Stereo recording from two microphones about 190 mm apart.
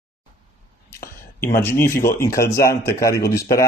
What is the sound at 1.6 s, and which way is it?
Speech, 15° left (ahead or behind).